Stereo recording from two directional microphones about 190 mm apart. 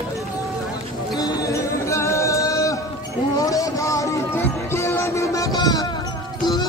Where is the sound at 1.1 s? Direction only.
20° left (ahead or behind).